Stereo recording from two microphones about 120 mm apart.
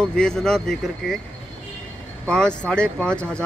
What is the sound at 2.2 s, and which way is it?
Speech, 10° left (ahead or behind).